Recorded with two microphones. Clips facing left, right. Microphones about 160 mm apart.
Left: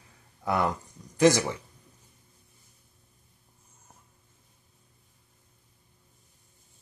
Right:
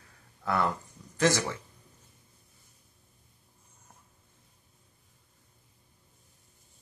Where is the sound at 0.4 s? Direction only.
15° left (ahead or behind).